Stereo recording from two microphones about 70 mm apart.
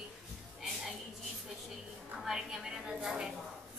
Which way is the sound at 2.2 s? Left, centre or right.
Centre.